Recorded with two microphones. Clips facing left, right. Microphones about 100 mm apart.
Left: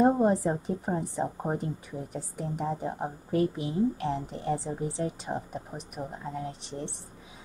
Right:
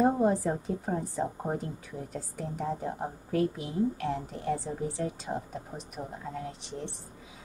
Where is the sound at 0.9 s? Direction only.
20° left (ahead or behind).